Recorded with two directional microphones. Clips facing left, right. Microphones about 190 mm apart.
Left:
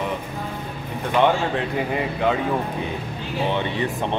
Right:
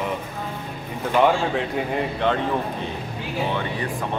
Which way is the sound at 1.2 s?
Centre (ahead or behind).